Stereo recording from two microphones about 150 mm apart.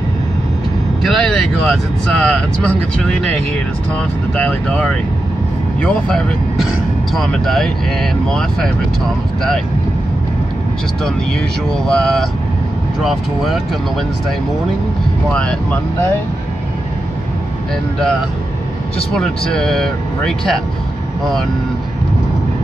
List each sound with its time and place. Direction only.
1.0 s speech: centre (ahead or behind)
4.4 s speech: 5° left (ahead or behind)
11.7 s speech: 5° left (ahead or behind)
15.3 s speech: 10° left (ahead or behind)
19.1 s speech: 5° left (ahead or behind)